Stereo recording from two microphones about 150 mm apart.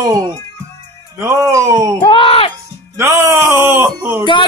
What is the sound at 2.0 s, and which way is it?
Music, 35° left (ahead or behind).